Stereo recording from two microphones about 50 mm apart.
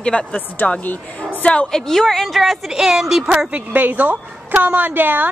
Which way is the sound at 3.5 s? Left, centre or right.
Right.